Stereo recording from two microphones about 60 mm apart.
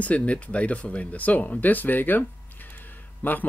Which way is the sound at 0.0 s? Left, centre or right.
Left.